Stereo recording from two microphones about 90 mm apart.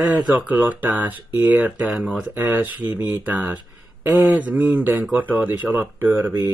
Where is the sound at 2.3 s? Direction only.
20° right (ahead or behind).